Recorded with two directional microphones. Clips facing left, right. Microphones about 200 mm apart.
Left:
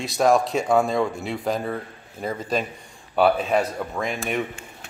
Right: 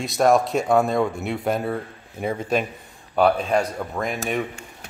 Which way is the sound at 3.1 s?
5° left (ahead or behind).